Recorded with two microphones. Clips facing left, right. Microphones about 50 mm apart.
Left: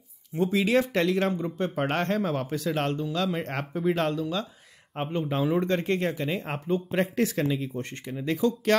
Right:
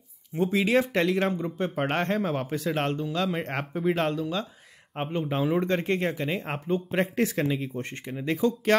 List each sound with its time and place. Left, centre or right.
0.4 s speech: centre